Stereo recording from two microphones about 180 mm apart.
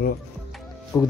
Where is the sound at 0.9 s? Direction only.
20° left (ahead or behind).